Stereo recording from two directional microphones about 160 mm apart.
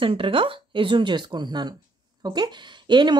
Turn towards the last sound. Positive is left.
turn(degrees=-30)  # may be behind; listen again after turning